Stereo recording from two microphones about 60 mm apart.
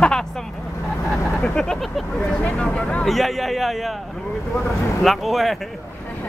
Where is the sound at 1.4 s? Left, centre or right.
Centre.